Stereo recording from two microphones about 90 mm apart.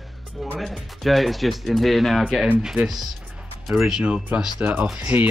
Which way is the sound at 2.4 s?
10° right (ahead or behind).